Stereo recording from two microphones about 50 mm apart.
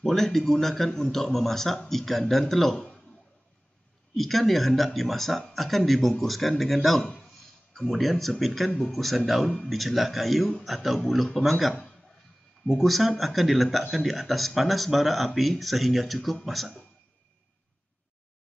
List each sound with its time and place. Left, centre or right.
0.0 s speech: centre
4.1 s speech: centre
11.7 s a sound: centre
12.6 s speech: centre